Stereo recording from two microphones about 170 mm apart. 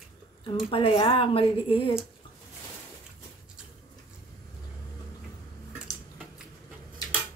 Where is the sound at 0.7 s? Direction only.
30° left (ahead or behind).